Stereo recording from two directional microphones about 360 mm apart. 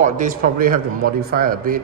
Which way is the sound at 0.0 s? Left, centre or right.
Right.